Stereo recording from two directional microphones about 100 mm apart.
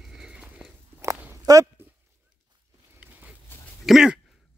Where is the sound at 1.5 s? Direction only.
40° right (ahead or behind).